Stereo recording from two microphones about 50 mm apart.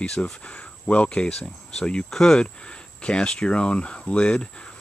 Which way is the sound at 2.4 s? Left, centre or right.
Left.